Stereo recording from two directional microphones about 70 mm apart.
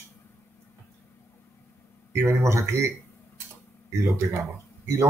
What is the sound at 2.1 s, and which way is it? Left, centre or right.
Speech, right.